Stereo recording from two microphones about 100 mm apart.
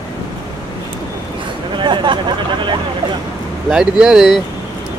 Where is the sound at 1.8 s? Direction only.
50° right (ahead or behind).